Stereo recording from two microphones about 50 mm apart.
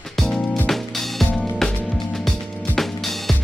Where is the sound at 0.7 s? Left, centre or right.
Centre.